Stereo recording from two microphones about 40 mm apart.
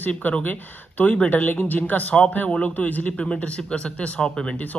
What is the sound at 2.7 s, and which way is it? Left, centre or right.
Speech, left.